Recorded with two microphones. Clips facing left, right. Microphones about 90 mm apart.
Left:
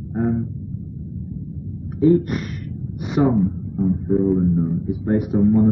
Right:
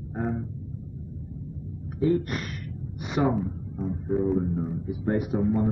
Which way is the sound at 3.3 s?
Centre (ahead or behind).